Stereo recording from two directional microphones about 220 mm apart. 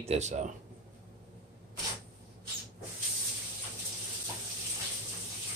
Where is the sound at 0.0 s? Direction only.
30° right (ahead or behind).